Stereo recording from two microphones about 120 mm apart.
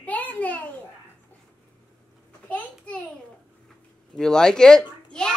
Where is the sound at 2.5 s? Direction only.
10° left (ahead or behind).